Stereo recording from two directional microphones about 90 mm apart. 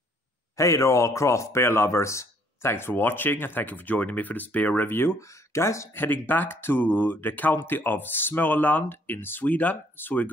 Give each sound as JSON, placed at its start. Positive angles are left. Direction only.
{"t": 0.6, "sound": "speech", "side_deg": 35}
{"t": 6.0, "sound": "speech", "side_deg": 20}